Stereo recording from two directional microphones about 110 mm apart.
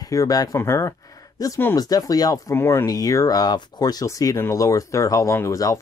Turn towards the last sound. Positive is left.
turn(degrees=30)  # may be behind; listen again after turning